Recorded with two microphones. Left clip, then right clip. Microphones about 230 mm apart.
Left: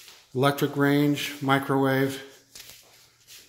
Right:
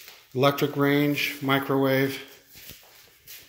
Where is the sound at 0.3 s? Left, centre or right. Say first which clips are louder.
Right 1 dB; centre.